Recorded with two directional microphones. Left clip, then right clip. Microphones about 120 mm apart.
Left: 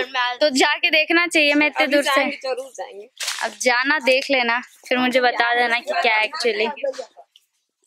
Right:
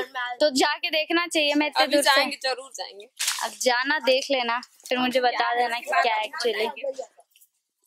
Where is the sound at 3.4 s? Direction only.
Centre (ahead or behind).